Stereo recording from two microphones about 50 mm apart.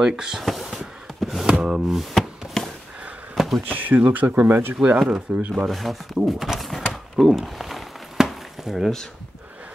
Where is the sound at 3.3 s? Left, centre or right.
Centre.